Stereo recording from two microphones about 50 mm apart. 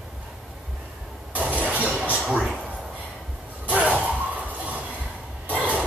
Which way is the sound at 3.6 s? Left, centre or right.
Right.